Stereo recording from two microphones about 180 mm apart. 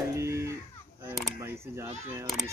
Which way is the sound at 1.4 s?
15° right (ahead or behind).